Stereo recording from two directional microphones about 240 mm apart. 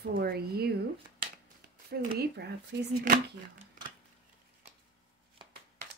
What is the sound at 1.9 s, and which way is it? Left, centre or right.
Speech, right.